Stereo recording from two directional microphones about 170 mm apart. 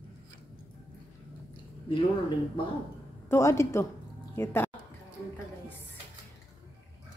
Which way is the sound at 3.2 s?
15° left (ahead or behind).